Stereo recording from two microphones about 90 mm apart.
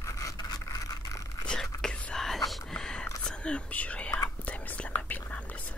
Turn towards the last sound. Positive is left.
turn(degrees=15)  # may be behind; listen again after turning